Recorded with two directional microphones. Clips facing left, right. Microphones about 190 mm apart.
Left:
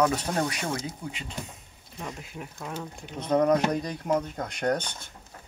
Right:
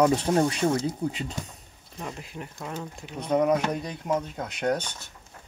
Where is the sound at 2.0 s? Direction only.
Centre (ahead or behind).